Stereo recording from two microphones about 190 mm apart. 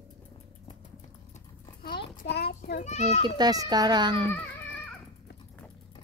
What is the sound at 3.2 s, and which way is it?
Speech, 20° right (ahead or behind).